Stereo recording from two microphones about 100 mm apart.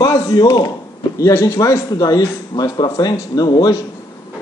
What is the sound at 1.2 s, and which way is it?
A man's voice, 30° left (ahead or behind).